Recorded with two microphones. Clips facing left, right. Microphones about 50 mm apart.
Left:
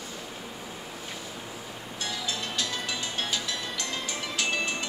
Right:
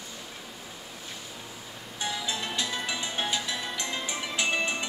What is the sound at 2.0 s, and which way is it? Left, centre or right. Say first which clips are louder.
Music: right 2 dB; centre.